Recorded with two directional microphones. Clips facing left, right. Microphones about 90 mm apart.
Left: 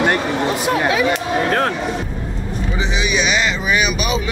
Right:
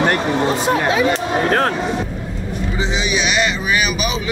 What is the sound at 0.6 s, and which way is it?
Speech, 30° right (ahead or behind).